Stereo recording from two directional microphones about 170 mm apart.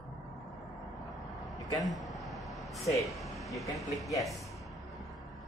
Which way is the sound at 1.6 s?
20° left (ahead or behind).